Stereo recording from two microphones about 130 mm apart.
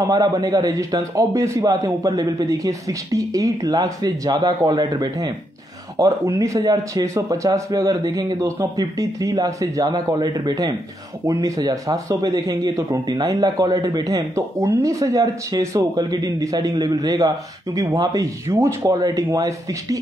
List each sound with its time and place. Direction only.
0.0 s a man's voice: 30° right (ahead or behind)